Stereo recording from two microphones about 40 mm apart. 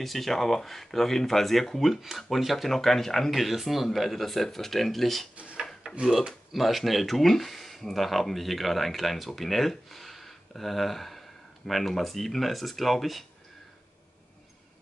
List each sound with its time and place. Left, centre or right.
0.0 s speech: centre
2.0 s speech: centre
5.3 s drawer open or close: right
5.9 s a sound: right
6.5 s speech: centre